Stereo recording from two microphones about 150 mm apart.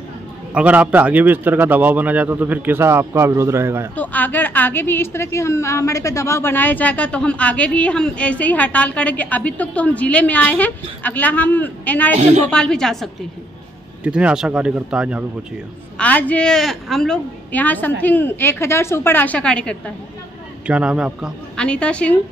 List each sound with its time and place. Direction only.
0.6 s a man's voice: 10° right (ahead or behind)
3.9 s a woman's voice: 10° left (ahead or behind)
12.2 s speech: 50° right (ahead or behind)
12.4 s a man's voice: 5° left (ahead or behind)
16.0 s a woman's voice: 10° left (ahead or behind)
20.6 s a man's voice: 5° right (ahead or behind)
21.5 s a woman's voice: 5° left (ahead or behind)